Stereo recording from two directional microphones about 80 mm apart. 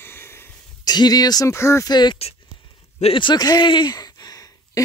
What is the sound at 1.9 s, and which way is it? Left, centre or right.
Speech, left.